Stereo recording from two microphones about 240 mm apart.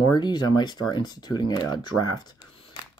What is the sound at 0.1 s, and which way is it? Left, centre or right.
Speech, centre.